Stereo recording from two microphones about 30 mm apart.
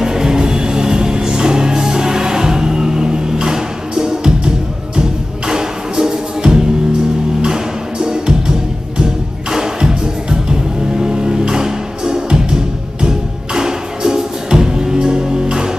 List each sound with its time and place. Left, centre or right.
0.0 s music: centre
5.5 s music: centre
11.0 s music: right